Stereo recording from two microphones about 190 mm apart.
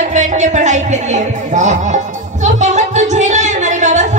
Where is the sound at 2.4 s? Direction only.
40° right (ahead or behind).